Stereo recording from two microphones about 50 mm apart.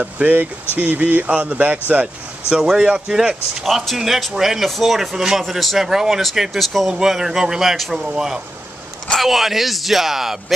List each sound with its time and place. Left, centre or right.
0.2 s speech: right; by 3.3 s centre
3.6 s speech: centre
7.7 s speech: centre
8.0 s speech: centre